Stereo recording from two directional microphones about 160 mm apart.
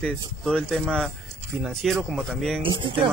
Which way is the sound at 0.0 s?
5° left (ahead or behind).